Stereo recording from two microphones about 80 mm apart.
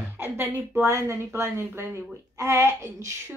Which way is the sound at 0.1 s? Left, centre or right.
Right.